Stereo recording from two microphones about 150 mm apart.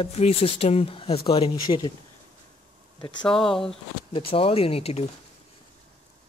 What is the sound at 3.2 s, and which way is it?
Speech, 5° left (ahead or behind).